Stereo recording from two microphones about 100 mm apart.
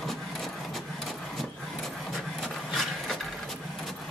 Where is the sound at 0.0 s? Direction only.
Centre (ahead or behind).